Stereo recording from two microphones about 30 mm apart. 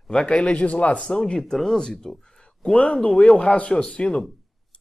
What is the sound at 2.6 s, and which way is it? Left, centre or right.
Speech, left.